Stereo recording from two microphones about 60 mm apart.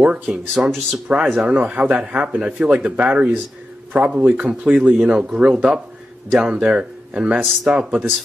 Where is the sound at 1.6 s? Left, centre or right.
Right.